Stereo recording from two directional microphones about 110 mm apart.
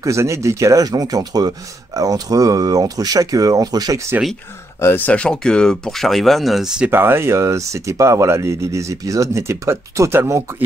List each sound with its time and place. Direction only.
0.0 s speech: 25° right (ahead or behind)
4.7 s speech: 20° left (ahead or behind); by 6.9 s 5° right (ahead or behind)
6.9 s speech: 20° right (ahead or behind)